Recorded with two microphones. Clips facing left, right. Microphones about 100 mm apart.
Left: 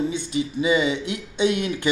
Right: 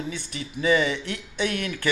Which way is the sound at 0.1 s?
20° left (ahead or behind).